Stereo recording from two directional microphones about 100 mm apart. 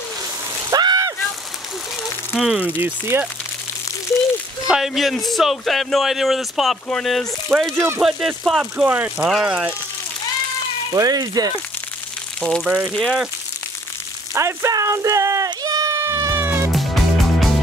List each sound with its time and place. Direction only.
0.7 s a sound: 40° right (ahead or behind)
2.3 s speech: 5° right (ahead or behind)
2.8 s speech: 20° right (ahead or behind)
4.6 s speech: 5° right (ahead or behind)
8.8 s speech: 15° right (ahead or behind)
9.3 s speech: 5° right (ahead or behind)
10.9 s speech: 40° right (ahead or behind)
12.4 s speech: 5° left (ahead or behind)
14.3 s speech: 30° right (ahead or behind)
16.2 s music: 30° right (ahead or behind)
16.7 s music: centre (ahead or behind)